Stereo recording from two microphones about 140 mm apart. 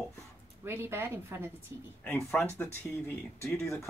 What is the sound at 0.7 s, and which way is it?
Speech, 15° right (ahead or behind).